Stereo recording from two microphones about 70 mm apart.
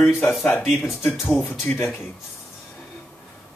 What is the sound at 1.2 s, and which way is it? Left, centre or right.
Speech, left.